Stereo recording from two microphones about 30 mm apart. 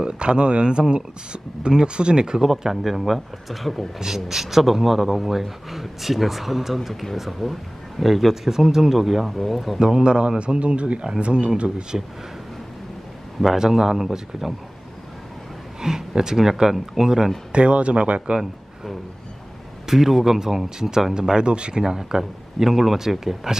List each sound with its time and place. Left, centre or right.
0.0 s a man's voice: right
2.6 s speech: centre
4.0 s a man's voice: centre
9.8 s a man's voice: right
11.9 s a man's voice: right
13.6 s a man's voice: centre
15.8 s a man's voice: centre
17.5 s speech: right
19.9 s a man's voice: centre
21.4 s speech: right
21.8 s a man's voice: centre